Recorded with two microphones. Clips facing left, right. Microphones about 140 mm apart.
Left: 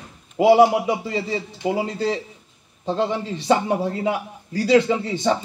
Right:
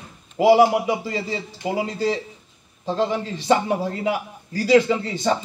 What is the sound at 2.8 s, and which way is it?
A man's voice, 20° left (ahead or behind).